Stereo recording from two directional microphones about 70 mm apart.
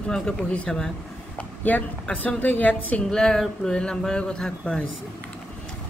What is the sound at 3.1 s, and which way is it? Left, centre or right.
Speech, centre.